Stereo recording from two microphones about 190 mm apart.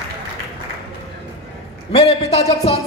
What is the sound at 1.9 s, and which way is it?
Speech, 35° left (ahead or behind).